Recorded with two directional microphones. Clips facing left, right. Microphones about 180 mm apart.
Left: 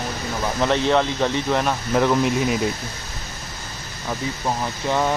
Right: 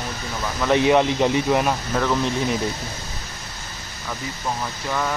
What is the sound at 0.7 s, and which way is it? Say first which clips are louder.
Speech: right 5 dB; 15° right (ahead or behind).